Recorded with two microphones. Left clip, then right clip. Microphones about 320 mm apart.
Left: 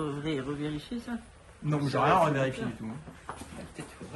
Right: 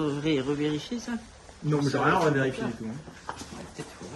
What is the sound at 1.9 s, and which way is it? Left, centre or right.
Speech, centre.